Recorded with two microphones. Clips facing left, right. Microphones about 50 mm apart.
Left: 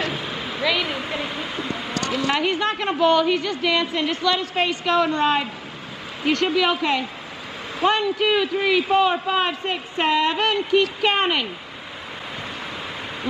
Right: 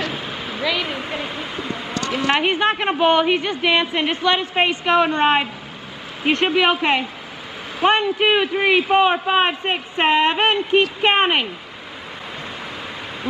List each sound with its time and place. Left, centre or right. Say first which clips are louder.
0.1 s speech: even; centre
2.0 s a man's voice: right 3 dB; right